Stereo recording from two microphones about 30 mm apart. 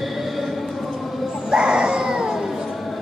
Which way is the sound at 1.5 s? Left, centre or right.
Right.